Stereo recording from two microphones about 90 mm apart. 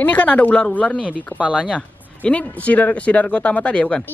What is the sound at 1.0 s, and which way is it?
Speech, 15° right (ahead or behind).